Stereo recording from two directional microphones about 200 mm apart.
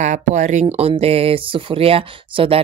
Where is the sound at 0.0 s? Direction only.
35° right (ahead or behind).